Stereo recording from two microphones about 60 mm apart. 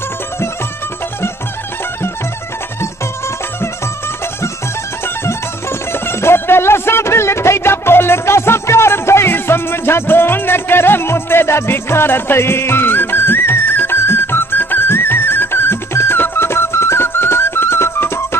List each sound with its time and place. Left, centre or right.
5.0 s music: left